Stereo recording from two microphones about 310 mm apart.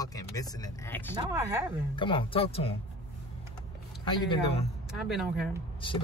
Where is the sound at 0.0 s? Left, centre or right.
Centre.